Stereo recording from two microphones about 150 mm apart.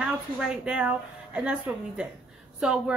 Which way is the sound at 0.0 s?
5° right (ahead or behind).